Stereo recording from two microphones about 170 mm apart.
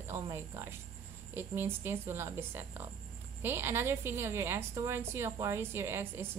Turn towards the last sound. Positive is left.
turn(degrees=-15)  # may be behind; listen again after turning